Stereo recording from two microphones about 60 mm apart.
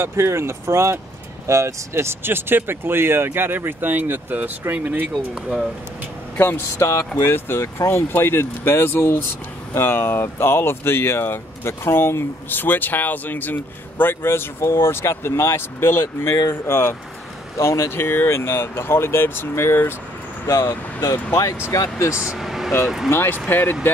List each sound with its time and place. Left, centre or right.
0.0 s speech: right
5.1 s speech: centre
6.8 s speech: left
7.2 s speech: left
20.4 s speech: left
22.1 s speech: centre
22.4 s vehicle: centre
23.0 s speech: left